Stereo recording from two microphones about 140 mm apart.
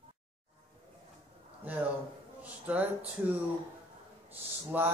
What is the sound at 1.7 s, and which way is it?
Speech, 10° right (ahead or behind).